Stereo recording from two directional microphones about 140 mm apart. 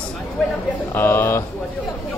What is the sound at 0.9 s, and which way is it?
Speech, 15° left (ahead or behind).